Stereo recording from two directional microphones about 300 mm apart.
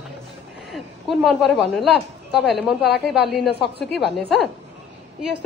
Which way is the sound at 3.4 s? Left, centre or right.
Left.